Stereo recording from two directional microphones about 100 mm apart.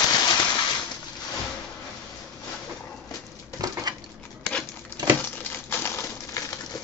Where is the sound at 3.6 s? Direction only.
40° right (ahead or behind).